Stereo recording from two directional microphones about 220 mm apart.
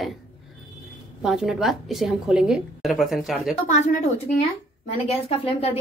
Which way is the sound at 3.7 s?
35° left (ahead or behind).